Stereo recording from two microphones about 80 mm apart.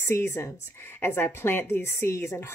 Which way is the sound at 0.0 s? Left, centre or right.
Left.